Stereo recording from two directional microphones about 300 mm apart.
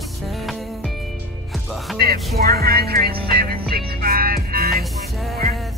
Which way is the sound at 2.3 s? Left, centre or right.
Right.